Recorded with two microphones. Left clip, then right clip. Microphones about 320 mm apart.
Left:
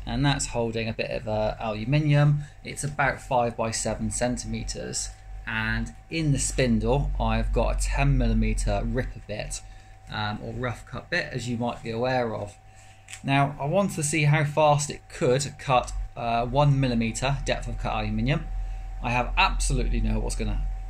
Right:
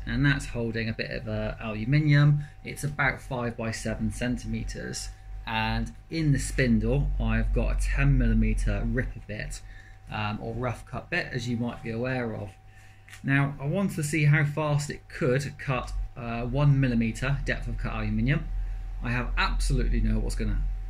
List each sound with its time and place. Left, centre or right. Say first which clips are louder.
0.0 s speech: left 1 dB; centre
0.5 s speech: left 4 dB; left
1.6 s speech: left 2 dB; centre
4.9 s speech: left 5 dB; centre
10.0 s speech: left 1 dB; centre
19.0 s speech: left 6 dB; centre